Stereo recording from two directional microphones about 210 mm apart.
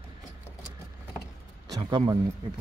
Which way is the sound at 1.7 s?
20° right (ahead or behind).